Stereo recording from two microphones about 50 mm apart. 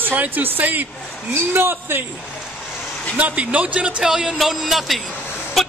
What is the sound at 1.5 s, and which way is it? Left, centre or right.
Speech, right.